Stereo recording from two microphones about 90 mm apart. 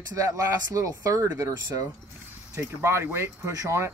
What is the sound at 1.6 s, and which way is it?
Speech, 45° right (ahead or behind).